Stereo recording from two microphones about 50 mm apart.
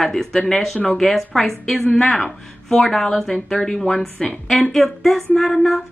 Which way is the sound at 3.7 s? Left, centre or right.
Centre.